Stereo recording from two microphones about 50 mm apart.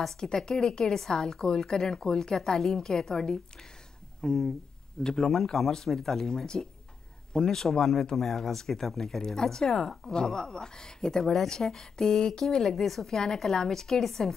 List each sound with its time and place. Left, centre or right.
0.0 s speech: centre